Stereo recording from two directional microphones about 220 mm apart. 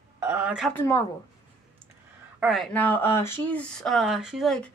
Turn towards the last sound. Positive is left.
turn(degrees=0)  # may be behind; listen again after turning